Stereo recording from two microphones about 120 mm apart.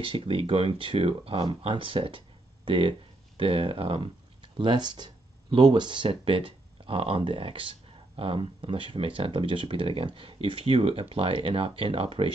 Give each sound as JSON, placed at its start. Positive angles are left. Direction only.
{"t": 0.0, "sound": "speech", "side_deg": -50}